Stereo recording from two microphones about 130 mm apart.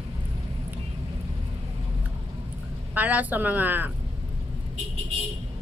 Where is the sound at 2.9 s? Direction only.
15° right (ahead or behind).